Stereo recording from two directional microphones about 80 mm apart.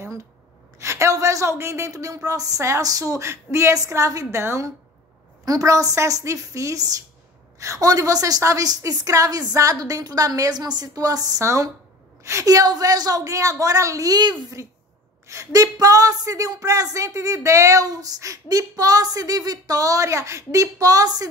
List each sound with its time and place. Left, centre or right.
0.7 s a woman's voice: right
14.6 s a woman's voice: right